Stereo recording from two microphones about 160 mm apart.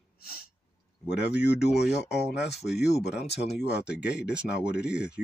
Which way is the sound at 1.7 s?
90° left.